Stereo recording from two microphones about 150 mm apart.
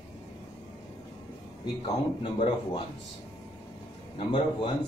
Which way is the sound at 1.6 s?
35° left (ahead or behind).